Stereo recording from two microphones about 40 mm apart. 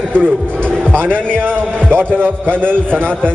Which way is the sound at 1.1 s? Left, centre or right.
Left.